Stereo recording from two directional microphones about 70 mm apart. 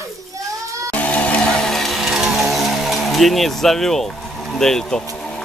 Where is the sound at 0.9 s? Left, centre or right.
Left.